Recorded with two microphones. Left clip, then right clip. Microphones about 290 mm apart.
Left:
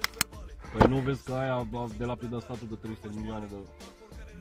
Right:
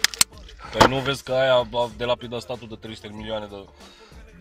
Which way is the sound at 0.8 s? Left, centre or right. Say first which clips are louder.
Right 7 dB; right.